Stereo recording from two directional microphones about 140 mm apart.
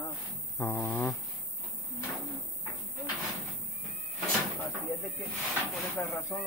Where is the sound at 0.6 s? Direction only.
20° left (ahead or behind).